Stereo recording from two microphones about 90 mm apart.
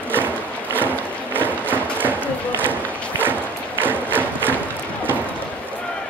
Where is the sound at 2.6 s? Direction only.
20° right (ahead or behind).